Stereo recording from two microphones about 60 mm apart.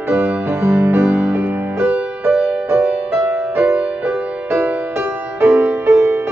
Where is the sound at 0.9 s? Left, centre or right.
Right.